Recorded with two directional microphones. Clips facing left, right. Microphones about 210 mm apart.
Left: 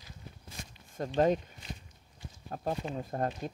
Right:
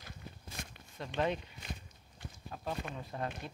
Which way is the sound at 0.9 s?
45° left (ahead or behind).